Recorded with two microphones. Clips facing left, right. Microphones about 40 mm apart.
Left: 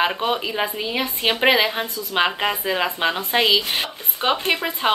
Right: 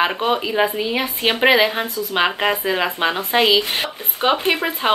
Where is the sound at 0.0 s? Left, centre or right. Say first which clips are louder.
Right 2 dB; centre.